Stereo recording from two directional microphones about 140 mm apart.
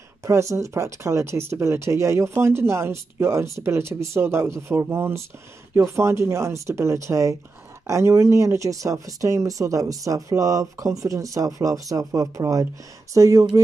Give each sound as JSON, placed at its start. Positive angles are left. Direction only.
{"t": 0.2, "sound": "speech", "side_deg": -20}